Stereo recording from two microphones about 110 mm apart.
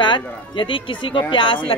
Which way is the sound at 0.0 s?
50° left (ahead or behind).